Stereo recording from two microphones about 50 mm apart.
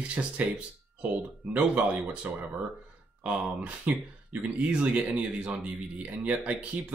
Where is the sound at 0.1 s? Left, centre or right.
Right.